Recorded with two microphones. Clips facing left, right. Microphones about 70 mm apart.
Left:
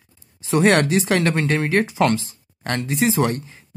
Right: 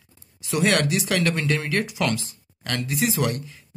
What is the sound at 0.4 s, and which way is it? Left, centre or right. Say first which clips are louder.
Speech: left 5 dB; left.